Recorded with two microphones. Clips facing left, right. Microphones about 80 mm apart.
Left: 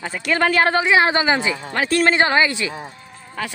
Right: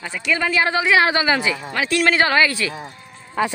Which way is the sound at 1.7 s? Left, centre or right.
Left.